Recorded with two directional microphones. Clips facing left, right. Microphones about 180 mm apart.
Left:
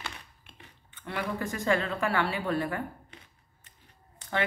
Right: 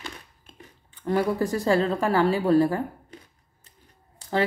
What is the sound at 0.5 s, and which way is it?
Speech, 40° right (ahead or behind).